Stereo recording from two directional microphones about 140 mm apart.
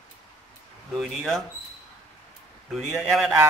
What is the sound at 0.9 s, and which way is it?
Speech, centre (ahead or behind).